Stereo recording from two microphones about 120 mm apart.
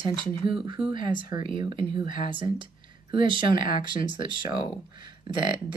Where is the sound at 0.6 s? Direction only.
45° right (ahead or behind).